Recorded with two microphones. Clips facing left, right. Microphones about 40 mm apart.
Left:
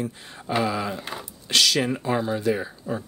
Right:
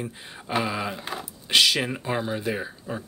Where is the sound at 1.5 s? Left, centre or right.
Centre.